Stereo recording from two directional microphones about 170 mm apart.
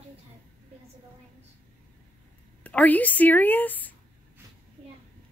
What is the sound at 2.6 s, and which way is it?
Speech, 10° left (ahead or behind).